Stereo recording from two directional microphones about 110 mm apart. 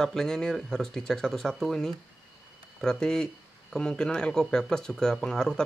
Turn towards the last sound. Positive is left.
turn(degrees=5)  # may be behind; listen again after turning